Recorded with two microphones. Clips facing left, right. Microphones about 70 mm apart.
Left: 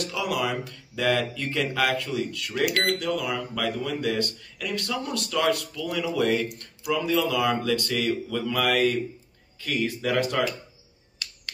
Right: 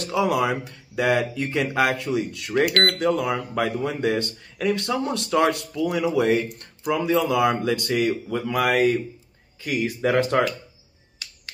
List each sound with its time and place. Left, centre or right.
0.0 s speech: right
10.0 s speech: right